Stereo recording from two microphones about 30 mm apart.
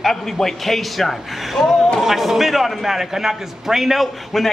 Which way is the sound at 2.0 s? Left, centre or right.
Centre.